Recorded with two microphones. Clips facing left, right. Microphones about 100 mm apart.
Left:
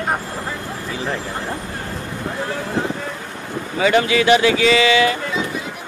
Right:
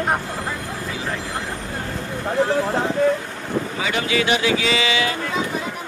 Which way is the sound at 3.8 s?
60° left (ahead or behind).